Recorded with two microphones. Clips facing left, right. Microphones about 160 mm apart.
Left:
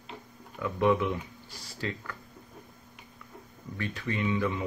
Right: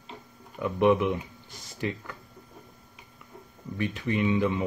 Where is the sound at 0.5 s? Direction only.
20° right (ahead or behind).